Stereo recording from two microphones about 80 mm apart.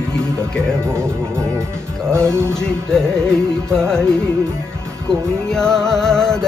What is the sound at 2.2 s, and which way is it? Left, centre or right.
Music, centre.